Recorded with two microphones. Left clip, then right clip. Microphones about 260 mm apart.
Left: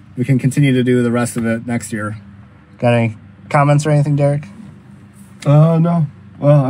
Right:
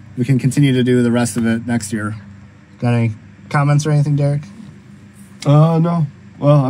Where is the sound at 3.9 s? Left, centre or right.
Centre.